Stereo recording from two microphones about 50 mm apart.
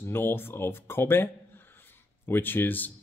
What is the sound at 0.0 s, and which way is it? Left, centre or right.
Speech, left.